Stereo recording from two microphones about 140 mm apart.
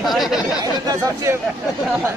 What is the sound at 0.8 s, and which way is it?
Speech, 25° right (ahead or behind).